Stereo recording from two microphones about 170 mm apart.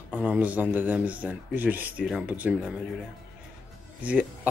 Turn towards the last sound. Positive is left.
turn(degrees=-10)  # may be behind; listen again after turning